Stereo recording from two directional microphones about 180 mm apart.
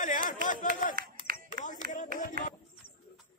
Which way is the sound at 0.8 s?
45° left (ahead or behind).